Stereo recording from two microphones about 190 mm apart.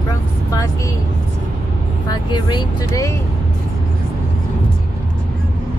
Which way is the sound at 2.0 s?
25° left (ahead or behind).